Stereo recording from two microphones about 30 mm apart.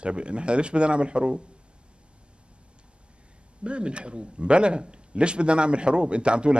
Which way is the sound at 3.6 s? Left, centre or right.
Right.